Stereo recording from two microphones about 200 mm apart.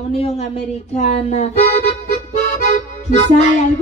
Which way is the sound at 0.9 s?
30° left (ahead or behind).